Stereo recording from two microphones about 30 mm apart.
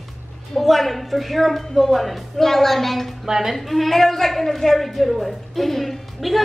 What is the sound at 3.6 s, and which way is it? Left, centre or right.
A woman's voice, centre.